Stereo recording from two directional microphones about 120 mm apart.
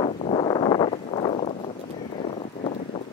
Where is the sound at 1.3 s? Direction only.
70° left (ahead or behind).